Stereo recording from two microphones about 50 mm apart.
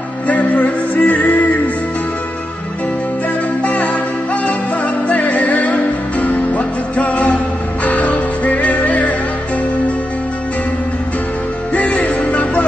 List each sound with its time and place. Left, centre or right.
0.3 s music: left
3.6 s music: left
11.7 s music: left